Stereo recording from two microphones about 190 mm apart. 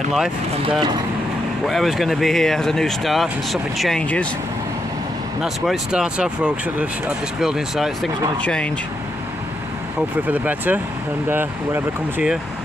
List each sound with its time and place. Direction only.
0.6 s speech: 25° right (ahead or behind)
1.7 s speech: centre (ahead or behind)
5.4 s speech: 5° right (ahead or behind)
10.2 s speech: 10° right (ahead or behind)